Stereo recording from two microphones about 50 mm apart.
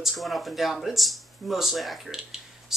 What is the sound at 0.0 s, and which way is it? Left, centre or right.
Speech, centre.